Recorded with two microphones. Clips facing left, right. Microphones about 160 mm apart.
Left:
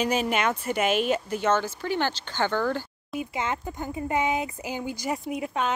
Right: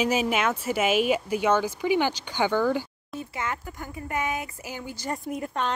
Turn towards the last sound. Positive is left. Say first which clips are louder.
# left 1 dB
turn(degrees=5)  # may be behind; listen again after turning